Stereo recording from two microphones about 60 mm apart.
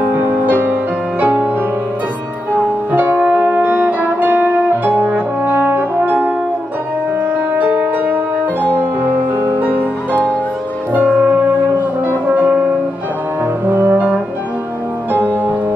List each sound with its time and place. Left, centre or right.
0.0 s music: right
2.9 s music: right
7.5 s music: right
9.6 s music: right
13.7 s brass instrument: right
15.1 s music: right